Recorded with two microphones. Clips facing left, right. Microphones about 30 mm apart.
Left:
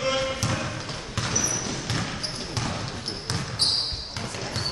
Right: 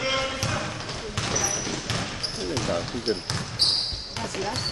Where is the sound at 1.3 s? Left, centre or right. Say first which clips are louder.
Even; right.